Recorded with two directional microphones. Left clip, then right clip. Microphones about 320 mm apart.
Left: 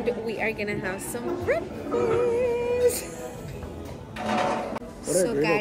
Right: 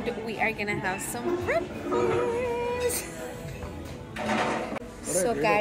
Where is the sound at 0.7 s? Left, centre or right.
Centre.